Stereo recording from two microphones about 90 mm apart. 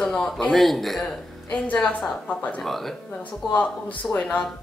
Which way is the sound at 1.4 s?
15° left (ahead or behind).